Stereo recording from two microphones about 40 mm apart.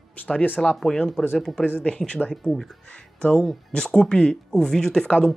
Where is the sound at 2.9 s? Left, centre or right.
Left.